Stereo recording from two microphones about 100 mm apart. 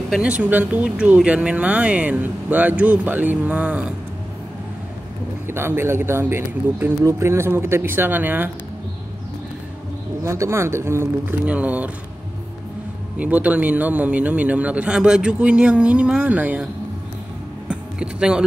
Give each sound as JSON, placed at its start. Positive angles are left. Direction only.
{"t": 0.1, "sound": "speech", "side_deg": -10}
{"t": 5.5, "sound": "speech", "side_deg": -25}
{"t": 10.2, "sound": "speech", "side_deg": -30}
{"t": 11.4, "sound": "speech", "side_deg": -15}
{"t": 13.2, "sound": "speech", "side_deg": -15}
{"t": 17.6, "sound": "a sound", "side_deg": -10}